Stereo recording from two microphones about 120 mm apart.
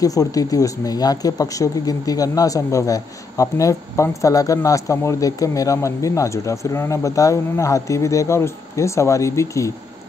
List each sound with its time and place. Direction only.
0.0 s speech: 30° left (ahead or behind)